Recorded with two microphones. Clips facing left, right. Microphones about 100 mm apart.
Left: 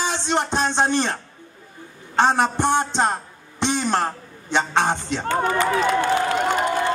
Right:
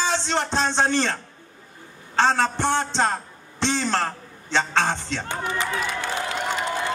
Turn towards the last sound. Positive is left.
turn(degrees=50)  # may be behind; listen again after turning